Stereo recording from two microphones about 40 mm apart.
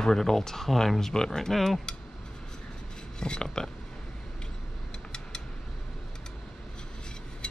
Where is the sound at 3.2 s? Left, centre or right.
Left.